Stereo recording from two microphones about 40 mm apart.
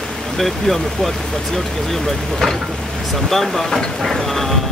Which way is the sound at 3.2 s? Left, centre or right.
Centre.